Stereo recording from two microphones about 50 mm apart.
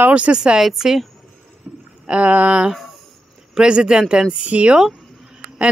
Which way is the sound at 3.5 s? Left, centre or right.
Centre.